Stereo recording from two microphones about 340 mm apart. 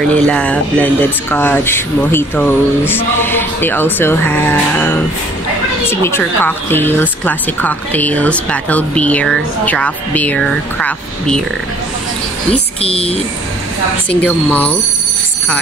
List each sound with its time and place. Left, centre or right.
0.1 s a woman's voice: centre
12.8 s speech: centre
14.2 s a woman's voice: centre